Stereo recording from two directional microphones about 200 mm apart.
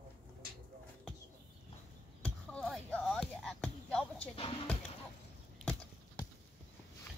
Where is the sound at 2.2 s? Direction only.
5° left (ahead or behind).